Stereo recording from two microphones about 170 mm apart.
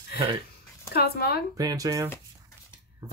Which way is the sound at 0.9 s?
70° left (ahead or behind).